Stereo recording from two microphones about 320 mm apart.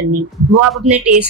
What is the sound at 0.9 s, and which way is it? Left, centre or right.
Speech, right.